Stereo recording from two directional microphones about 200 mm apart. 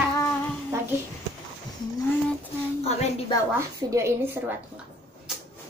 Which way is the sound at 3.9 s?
15° right (ahead or behind).